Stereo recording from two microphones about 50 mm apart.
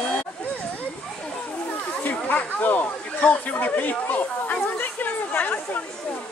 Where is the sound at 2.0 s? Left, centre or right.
Left.